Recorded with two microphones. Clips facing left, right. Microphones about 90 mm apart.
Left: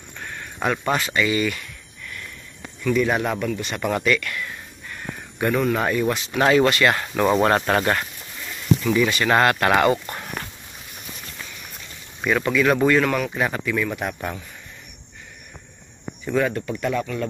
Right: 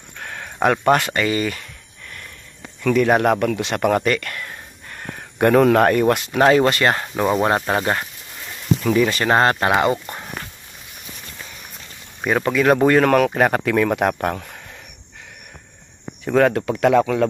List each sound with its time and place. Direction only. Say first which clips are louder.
0.2 s a sound: right 2 dB; 90° right
0.6 s speech: right 7 dB; 55° right (ahead or behind)
1.1 s a sound: right 1 dB; 40° right (ahead or behind)
2.8 s speech: right 5 dB; 65° right (ahead or behind); by 3.8 s 85° right
3.8 s a sound: right 3 dB; 45° right (ahead or behind)
5.4 s speech: right 8 dB; 75° right (ahead or behind)
6.3 s speech: right 1 dB; 35° right (ahead or behind)
7.4 s speech: even; 15° right (ahead or behind)
8.8 s speech: right 4 dB; 40° right (ahead or behind)
9.7 s speech: even; 20° right (ahead or behind)
12.2 s speech: right 2 dB; 35° right (ahead or behind)
13.2 s speech: right 7 dB; 60° right (ahead or behind)
16.3 s speech: right 6 dB; 70° right (ahead or behind); by 17.3 s 90° right